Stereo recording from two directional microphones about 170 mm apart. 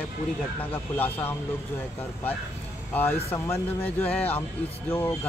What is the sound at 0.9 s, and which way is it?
Speech, 10° left (ahead or behind).